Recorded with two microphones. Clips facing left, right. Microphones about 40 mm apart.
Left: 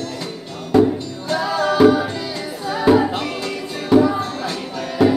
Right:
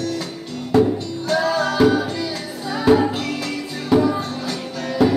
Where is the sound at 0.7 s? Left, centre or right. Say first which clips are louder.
Left 2 dB; centre.